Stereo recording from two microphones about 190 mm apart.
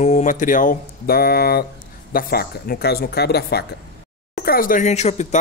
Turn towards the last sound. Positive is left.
turn(degrees=40)  # may be behind; listen again after turning